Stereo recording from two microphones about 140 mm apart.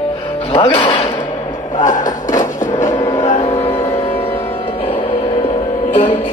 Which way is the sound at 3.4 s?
40° left (ahead or behind).